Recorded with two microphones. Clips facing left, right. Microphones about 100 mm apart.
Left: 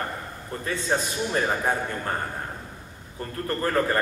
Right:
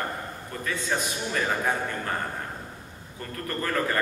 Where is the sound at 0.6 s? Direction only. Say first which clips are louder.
Left 3 dB; 30° left (ahead or behind).